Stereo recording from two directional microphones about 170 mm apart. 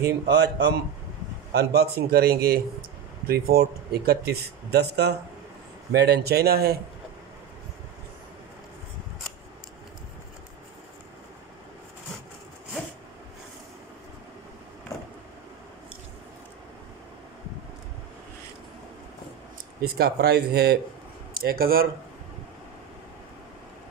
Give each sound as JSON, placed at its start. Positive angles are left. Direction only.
{"t": 0.3, "sound": "a man's voice", "side_deg": -80}
{"t": 19.8, "sound": "speech", "side_deg": -65}